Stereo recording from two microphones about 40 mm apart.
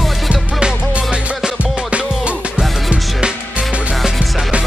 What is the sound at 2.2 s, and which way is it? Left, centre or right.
Music, right.